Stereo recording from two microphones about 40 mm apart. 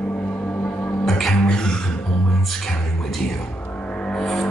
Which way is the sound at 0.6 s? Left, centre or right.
Left.